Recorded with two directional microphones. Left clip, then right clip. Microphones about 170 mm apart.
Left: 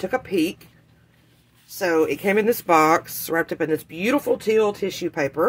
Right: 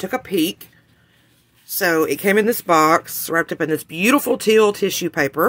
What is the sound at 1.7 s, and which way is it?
Speech, 40° right (ahead or behind).